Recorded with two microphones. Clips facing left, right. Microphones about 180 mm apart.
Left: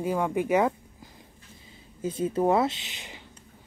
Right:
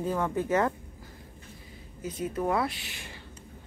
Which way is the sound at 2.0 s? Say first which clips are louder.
Left 5 dB; 30° left (ahead or behind).